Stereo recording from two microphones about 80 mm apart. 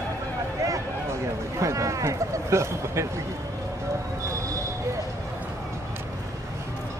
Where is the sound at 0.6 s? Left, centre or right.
Right.